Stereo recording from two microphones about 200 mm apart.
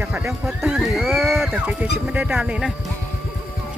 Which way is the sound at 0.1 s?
10° right (ahead or behind).